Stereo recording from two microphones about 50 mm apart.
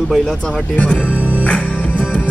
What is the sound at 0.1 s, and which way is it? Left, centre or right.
Speech, centre.